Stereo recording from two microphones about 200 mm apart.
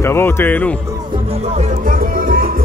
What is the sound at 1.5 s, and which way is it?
Music, 40° right (ahead or behind).